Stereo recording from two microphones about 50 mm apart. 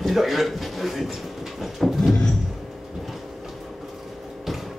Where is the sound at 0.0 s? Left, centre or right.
Centre.